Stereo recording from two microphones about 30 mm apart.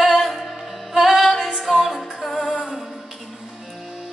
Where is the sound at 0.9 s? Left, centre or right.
Centre.